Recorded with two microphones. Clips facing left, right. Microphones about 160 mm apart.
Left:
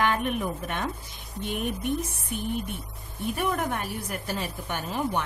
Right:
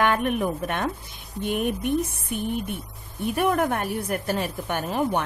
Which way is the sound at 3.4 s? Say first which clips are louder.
Right 6 dB; 60° right (ahead or behind).